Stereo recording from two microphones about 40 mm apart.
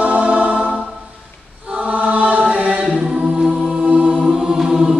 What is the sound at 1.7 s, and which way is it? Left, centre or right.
Choir, right.